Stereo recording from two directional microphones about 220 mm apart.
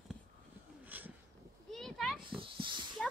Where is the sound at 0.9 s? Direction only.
10° right (ahead or behind).